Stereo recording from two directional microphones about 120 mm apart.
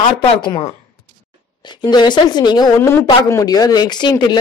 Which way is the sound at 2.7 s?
20° left (ahead or behind).